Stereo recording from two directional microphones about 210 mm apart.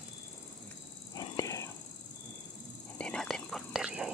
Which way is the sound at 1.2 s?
15° left (ahead or behind).